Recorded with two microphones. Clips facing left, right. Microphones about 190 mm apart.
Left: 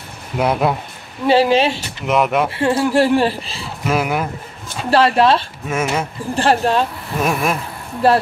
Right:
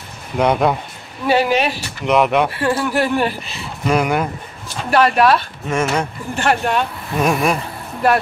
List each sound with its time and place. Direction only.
0.4 s speech: 5° left (ahead or behind)
1.2 s speech: 30° left (ahead or behind)
2.0 s speech: centre (ahead or behind)
2.5 s speech: 25° left (ahead or behind)
3.8 s speech: 5° left (ahead or behind)
4.9 s speech: 30° left (ahead or behind)
5.7 s speech: 5° left (ahead or behind)
6.3 s speech: 30° left (ahead or behind)
7.2 s speech: centre (ahead or behind)
8.0 s speech: 30° left (ahead or behind)